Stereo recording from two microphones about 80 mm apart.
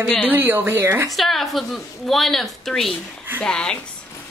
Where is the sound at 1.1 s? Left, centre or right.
Centre.